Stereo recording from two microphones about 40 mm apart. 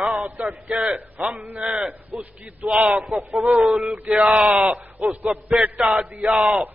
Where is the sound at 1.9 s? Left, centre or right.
Right.